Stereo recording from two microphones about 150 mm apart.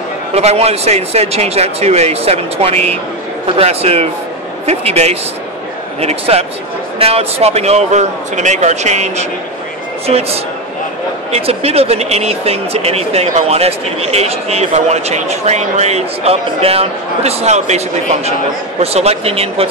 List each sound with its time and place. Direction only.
0.3 s speech: 45° right (ahead or behind)